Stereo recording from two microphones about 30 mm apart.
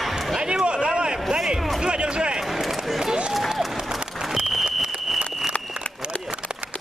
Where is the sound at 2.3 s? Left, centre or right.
Centre.